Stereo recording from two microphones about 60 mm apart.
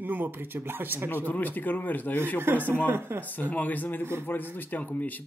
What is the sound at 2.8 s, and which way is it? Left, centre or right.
Speech, right.